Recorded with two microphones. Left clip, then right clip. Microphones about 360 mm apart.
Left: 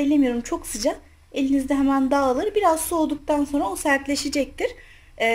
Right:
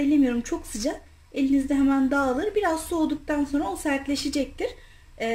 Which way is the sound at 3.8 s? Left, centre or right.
Centre.